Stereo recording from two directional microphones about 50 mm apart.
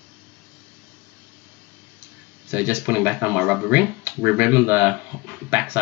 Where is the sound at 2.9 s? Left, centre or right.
Right.